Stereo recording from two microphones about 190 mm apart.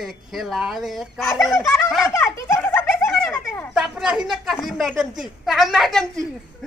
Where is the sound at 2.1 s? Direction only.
15° left (ahead or behind).